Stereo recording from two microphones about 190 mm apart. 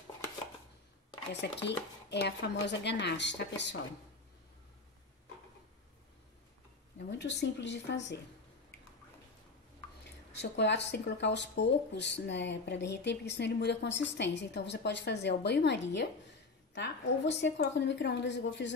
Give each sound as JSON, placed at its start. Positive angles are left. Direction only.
{"t": 1.3, "sound": "speech", "side_deg": 65}
{"t": 7.1, "sound": "a woman's voice", "side_deg": 65}
{"t": 10.3, "sound": "a woman's voice", "side_deg": 65}